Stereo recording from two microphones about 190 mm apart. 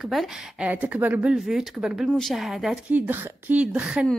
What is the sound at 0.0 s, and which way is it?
A woman's voice, centre (ahead or behind).